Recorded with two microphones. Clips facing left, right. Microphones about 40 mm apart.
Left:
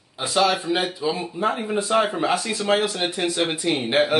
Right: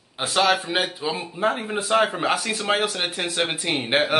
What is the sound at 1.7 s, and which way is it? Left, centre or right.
Speech, right.